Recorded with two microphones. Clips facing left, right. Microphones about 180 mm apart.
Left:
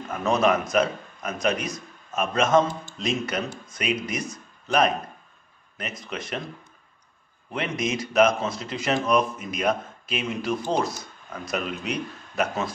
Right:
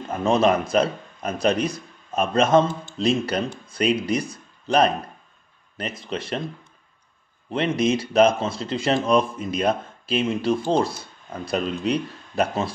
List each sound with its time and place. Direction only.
0.1 s speech: 30° right (ahead or behind)
7.5 s speech: 30° right (ahead or behind)